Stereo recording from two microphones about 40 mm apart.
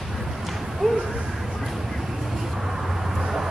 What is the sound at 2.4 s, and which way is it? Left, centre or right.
Vehicle, centre.